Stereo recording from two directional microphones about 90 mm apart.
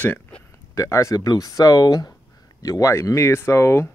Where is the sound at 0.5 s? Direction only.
35° left (ahead or behind).